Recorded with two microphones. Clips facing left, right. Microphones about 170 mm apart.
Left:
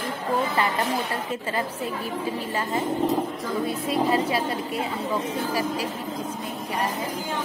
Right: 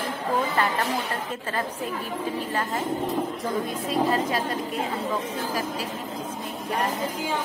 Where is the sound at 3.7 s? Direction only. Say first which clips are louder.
Left 2 dB; 10° left (ahead or behind).